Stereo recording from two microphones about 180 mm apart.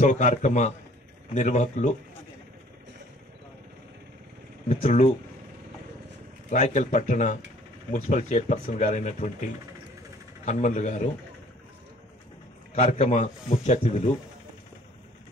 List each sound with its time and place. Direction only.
0.0 s speech: 40° left (ahead or behind)
4.6 s speech: 40° left (ahead or behind)
6.5 s speech: 45° left (ahead or behind)
10.4 s speech: 40° left (ahead or behind)
12.7 s speech: 40° left (ahead or behind)